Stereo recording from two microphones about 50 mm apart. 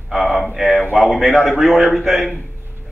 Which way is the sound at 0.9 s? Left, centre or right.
Centre.